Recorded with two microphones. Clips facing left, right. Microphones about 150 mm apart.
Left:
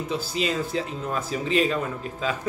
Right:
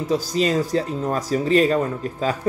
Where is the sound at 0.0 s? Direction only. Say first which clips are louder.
Right 6 dB; 40° right (ahead or behind).